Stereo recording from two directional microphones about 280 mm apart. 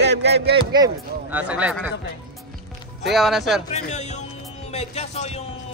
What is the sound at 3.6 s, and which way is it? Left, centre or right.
Speech, left.